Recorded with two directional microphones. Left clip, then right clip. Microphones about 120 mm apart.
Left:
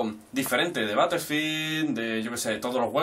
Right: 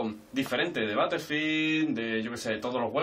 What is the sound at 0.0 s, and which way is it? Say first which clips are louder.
Speech: left 3 dB; 15° left (ahead or behind).